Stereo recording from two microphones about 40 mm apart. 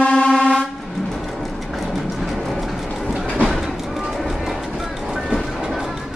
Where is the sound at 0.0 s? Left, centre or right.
Left.